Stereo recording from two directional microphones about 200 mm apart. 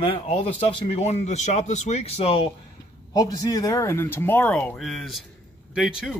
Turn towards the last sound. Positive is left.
turn(degrees=0)  # may be behind; listen again after turning